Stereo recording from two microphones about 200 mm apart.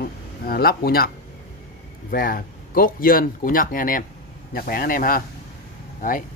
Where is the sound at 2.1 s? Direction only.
45° left (ahead or behind).